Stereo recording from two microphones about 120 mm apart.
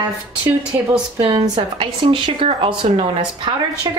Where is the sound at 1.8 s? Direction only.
45° right (ahead or behind).